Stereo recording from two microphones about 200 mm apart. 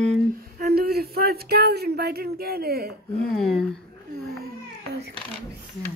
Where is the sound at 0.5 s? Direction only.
50° right (ahead or behind).